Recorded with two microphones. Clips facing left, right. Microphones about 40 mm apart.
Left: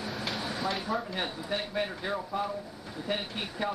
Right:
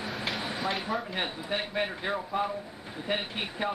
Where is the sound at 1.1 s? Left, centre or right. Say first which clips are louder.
Right 1 dB; right.